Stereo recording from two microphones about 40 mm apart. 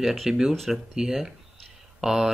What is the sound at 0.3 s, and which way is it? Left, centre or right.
Speech, centre.